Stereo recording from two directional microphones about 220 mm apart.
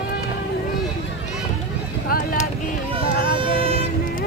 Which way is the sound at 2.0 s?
40° left (ahead or behind).